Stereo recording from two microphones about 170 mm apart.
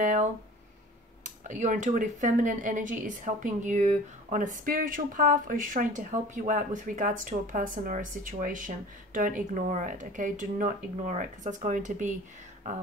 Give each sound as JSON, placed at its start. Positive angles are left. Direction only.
{"t": 0.0, "sound": "speech", "side_deg": -45}